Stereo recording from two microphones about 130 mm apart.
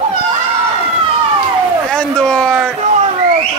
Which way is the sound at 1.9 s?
5° left (ahead or behind).